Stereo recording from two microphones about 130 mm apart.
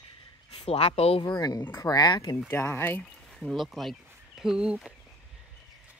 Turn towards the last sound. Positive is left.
turn(degrees=-5)  # may be behind; listen again after turning